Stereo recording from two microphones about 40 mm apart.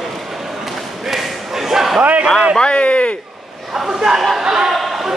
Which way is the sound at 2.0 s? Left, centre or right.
Right.